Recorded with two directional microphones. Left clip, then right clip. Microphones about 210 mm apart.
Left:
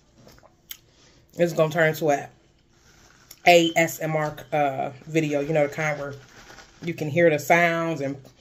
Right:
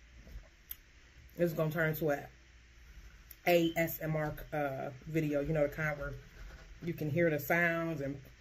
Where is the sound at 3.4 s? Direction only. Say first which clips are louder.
Left 13 dB; 10° right (ahead or behind).